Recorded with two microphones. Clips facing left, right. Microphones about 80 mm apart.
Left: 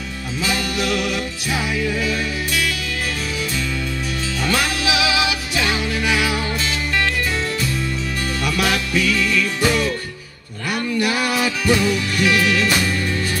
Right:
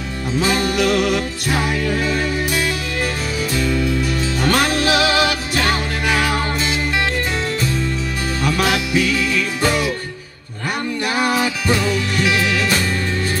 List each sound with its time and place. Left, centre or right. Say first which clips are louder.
0.4 s music: right 5 dB; right
4.4 s music: right 4 dB; right
8.5 s music: right 3 dB; right
11.0 s music: right 2 dB; right